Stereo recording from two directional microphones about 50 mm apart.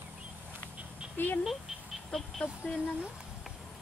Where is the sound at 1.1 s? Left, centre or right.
Left.